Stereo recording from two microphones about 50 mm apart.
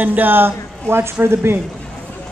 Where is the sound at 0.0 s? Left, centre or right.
Right.